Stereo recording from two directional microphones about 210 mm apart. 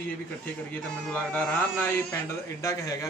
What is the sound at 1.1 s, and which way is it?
A man's voice, 5° left (ahead or behind).